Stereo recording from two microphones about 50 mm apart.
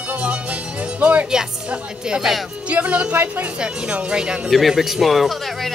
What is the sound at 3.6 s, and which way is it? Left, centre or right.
Speech, centre.